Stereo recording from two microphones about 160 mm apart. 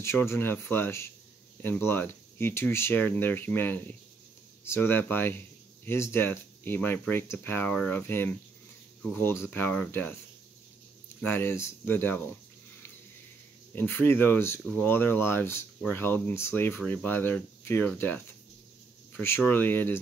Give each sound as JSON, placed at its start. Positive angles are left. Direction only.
{"t": 0.0, "sound": "speech", "side_deg": 15}
{"t": 11.1, "sound": "speech", "side_deg": 10}
{"t": 13.7, "sound": "speech", "side_deg": 10}